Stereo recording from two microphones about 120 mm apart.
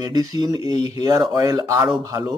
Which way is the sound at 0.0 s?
30° right (ahead or behind).